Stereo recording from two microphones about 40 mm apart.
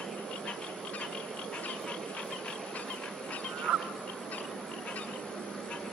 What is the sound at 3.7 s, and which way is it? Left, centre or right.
Goose, right.